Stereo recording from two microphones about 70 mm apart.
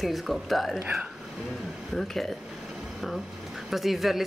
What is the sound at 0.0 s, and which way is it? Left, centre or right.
Speech, centre.